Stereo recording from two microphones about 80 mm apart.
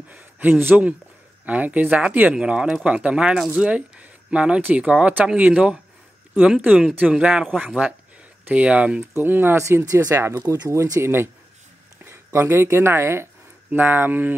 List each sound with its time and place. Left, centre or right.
0.1 s speech: right
9.6 s speech: right